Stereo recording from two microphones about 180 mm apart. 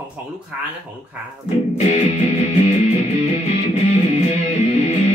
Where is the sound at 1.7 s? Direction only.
40° left (ahead or behind).